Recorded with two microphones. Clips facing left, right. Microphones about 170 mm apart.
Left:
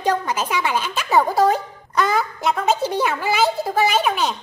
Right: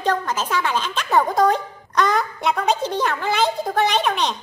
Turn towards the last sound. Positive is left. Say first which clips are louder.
# left 1 dB
turn(degrees=5)  # may be behind; listen again after turning